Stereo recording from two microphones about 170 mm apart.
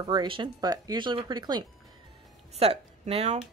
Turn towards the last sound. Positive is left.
turn(degrees=-40)  # may be behind; listen again after turning